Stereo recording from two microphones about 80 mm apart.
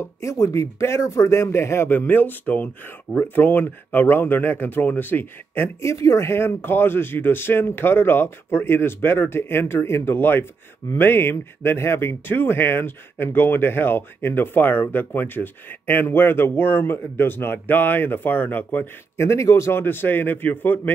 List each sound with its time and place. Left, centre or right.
0.0 s speech: left
19.1 s speech: left